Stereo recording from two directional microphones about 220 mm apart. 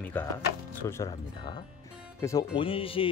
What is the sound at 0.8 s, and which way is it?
A man's voice, 15° left (ahead or behind).